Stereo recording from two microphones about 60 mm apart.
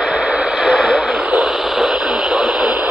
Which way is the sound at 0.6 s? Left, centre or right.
Centre.